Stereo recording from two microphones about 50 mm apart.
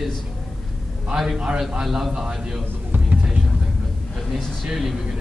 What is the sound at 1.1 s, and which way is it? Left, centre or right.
A man's voice, centre.